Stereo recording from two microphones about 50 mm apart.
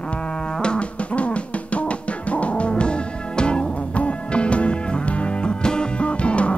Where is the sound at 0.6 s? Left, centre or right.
Left.